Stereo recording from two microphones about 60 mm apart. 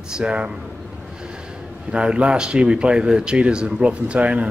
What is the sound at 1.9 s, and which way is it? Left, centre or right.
Speech, centre.